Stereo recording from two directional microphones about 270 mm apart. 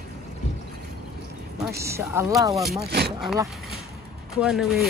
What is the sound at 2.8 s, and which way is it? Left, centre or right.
Speech, right.